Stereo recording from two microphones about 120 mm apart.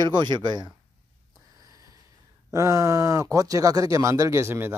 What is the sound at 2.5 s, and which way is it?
Speech, 25° right (ahead or behind).